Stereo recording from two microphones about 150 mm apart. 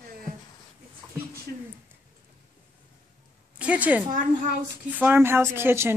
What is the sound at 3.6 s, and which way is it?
Speech, 10° right (ahead or behind).